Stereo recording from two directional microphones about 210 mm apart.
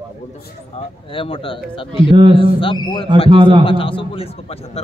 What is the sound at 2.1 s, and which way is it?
A man's voice, 25° right (ahead or behind).